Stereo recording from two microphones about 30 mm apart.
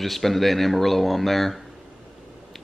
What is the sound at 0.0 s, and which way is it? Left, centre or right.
Speech, centre.